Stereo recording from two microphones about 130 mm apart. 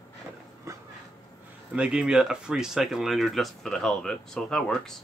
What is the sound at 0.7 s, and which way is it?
Dog, 25° right (ahead or behind).